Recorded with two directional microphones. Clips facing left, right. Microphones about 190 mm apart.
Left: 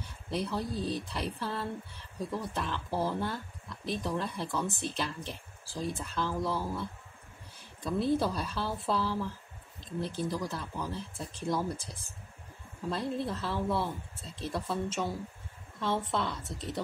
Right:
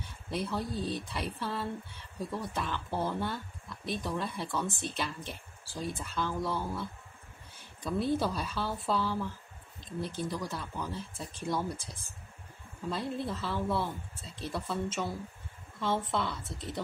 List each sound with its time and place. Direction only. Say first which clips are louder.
0.3 s speech: left 1 dB; centre (ahead or behind)
12.9 s speech: left 2 dB; centre (ahead or behind)